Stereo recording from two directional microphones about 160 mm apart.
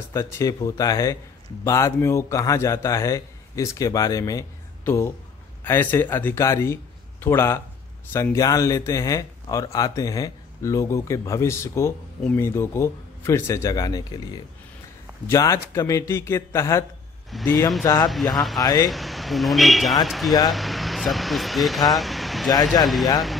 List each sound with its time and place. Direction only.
0.1 s speech: 20° left (ahead or behind)
18.9 s speech: centre (ahead or behind)